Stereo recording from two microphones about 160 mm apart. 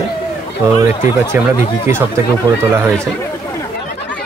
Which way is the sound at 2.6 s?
15° right (ahead or behind).